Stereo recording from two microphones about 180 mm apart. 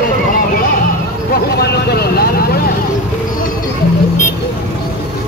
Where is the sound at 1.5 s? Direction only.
65° left (ahead or behind).